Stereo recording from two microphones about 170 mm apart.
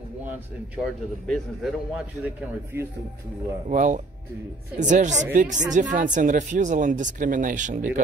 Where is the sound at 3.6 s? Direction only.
45° right (ahead or behind).